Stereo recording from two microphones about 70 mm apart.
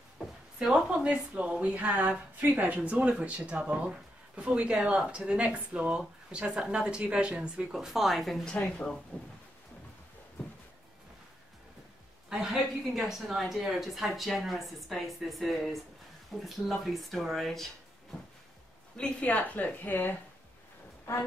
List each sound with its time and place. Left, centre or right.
0.2 s a sound: centre
0.6 s a woman's voice: centre
8.5 s speech: centre
12.3 s speech: centre
18.9 s a woman's voice: centre